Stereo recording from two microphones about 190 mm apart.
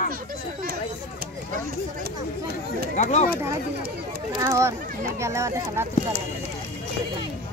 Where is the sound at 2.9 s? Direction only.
35° left (ahead or behind).